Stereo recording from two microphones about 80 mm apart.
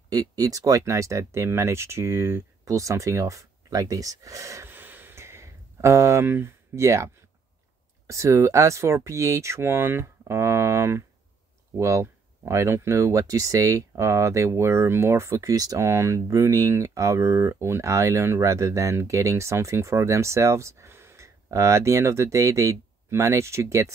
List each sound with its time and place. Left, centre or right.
0.1 s speech: right
4.6 s a sound: right
8.1 s speech: right